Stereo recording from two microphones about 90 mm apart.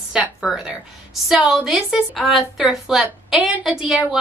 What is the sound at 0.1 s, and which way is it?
A woman's voice, 5° right (ahead or behind).